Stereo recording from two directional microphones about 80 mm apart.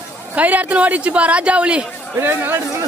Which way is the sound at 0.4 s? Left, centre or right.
Centre.